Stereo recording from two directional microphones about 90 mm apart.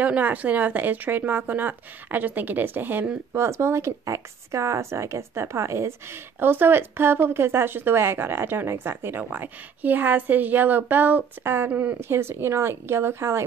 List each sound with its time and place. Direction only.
0.0 s speech: 20° right (ahead or behind)